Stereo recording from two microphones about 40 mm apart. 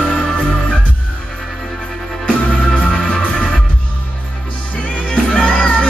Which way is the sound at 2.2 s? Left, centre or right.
Left.